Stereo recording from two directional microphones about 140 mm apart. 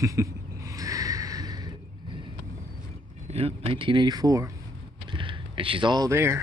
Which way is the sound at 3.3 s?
45° right (ahead or behind).